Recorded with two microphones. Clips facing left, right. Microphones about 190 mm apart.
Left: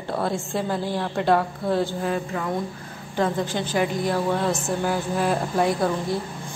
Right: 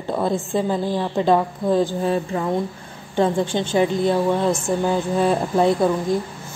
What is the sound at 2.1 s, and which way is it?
A woman's voice, 30° right (ahead or behind).